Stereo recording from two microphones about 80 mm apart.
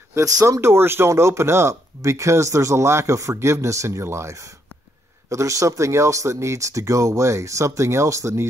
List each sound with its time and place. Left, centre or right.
0.1 s speech: right